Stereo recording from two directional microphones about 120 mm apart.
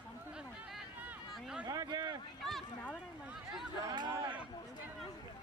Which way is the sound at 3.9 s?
35° right (ahead or behind).